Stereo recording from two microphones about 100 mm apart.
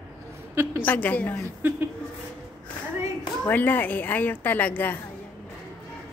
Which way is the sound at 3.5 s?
20° left (ahead or behind).